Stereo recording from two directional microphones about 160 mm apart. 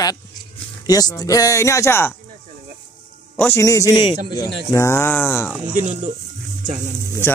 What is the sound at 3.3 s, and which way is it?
Speech, 15° left (ahead or behind).